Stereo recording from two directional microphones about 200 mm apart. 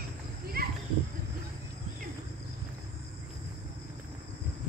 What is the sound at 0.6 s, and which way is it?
Children playing, 50° right (ahead or behind).